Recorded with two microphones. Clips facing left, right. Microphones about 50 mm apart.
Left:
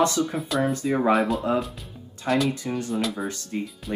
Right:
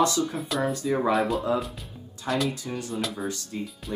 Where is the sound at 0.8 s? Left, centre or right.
Left.